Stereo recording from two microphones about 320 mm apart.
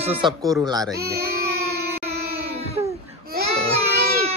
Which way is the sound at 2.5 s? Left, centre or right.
Centre.